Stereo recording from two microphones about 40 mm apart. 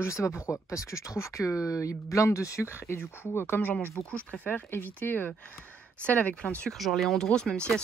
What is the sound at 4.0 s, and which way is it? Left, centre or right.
Speech, left.